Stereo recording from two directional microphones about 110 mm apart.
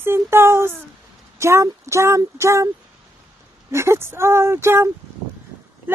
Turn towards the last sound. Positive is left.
turn(degrees=-25)  # may be behind; listen again after turning